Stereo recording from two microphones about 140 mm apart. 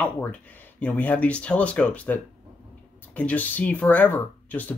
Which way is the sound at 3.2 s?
10° left (ahead or behind).